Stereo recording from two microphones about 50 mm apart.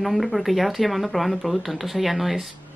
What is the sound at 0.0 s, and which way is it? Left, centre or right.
Speech, centre.